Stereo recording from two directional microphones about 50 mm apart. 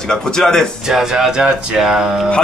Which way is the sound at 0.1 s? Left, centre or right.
Centre.